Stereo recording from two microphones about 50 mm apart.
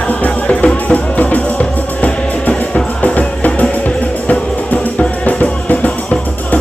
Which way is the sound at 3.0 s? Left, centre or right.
Left.